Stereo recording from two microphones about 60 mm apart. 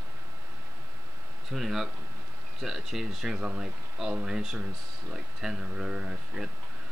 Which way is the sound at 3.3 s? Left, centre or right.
Centre.